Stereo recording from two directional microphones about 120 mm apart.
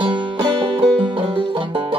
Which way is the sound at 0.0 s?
45° right (ahead or behind).